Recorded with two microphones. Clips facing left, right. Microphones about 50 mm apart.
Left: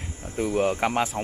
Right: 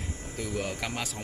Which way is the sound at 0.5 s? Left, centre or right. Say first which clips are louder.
Left 11 dB; left.